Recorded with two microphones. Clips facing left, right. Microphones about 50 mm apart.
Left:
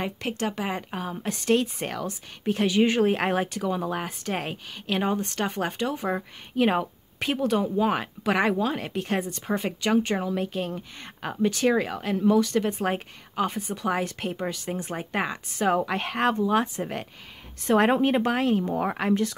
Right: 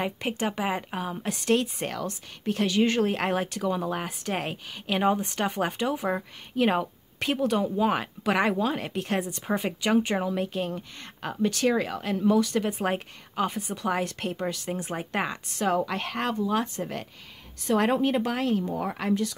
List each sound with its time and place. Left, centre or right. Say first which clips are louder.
0.0 s speech: even; centre
15.7 s a woman's voice: left 1 dB; left
17.6 s a woman's voice: left 3 dB; left